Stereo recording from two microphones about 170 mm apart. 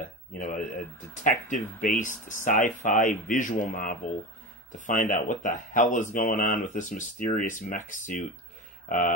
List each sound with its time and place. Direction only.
0.0 s speech: 50° left (ahead or behind)